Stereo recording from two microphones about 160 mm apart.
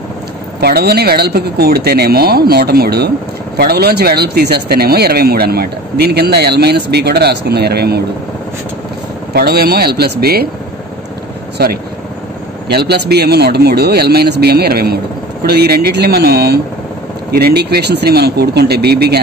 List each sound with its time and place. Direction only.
0.6 s speech: 80° right
9.3 s speech: 80° right
11.5 s speech: 75° right (ahead or behind)
12.6 s a man's voice: 90° right; by 15.0 s 75° right (ahead or behind)
15.4 s a man's voice: 85° right